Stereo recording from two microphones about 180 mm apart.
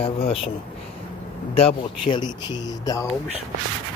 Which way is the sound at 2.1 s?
25° left (ahead or behind).